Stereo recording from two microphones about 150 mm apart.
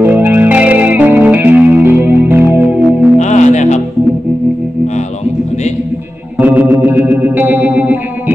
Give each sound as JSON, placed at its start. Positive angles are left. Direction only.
{"t": 0.0, "sound": "music", "side_deg": -15}
{"t": 3.2, "sound": "music", "side_deg": 55}
{"t": 6.4, "sound": "music", "side_deg": -10}